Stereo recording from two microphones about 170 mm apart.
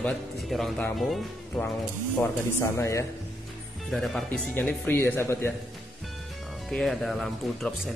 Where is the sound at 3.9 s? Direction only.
Centre (ahead or behind).